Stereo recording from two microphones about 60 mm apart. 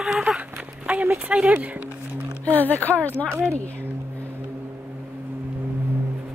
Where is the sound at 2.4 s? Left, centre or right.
Left.